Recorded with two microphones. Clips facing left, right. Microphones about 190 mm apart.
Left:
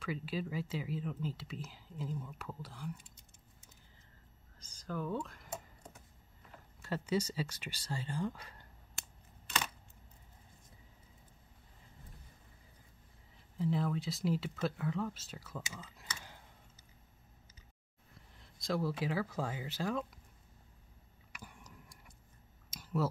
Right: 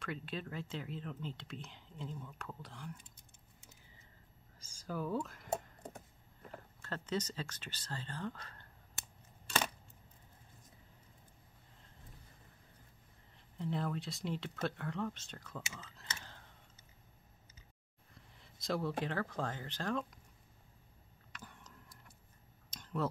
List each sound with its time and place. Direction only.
0.0 s speech: 5° left (ahead or behind)
4.6 s speech: 10° right (ahead or behind)
6.8 s speech: 10° left (ahead or behind)
13.6 s speech: centre (ahead or behind)
18.1 s a sound: centre (ahead or behind)
19.0 s speech: 5° left (ahead or behind)
21.3 s a sound: 10° left (ahead or behind)